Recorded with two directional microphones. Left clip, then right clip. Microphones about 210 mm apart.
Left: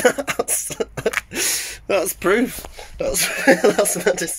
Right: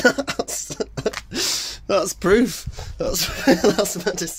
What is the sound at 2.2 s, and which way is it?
Speech, 45° right (ahead or behind).